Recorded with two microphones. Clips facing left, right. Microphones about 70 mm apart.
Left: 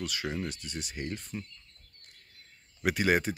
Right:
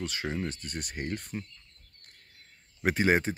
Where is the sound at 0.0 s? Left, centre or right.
Right.